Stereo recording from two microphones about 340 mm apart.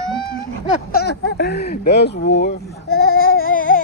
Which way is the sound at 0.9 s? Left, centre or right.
Left.